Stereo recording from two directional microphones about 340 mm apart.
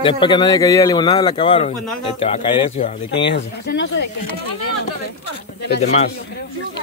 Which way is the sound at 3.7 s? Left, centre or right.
Left.